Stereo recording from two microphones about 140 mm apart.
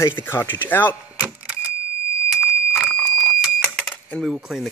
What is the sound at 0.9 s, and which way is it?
Vehicle, 10° right (ahead or behind).